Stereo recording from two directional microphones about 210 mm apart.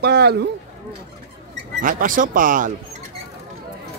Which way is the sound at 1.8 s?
40° right (ahead or behind).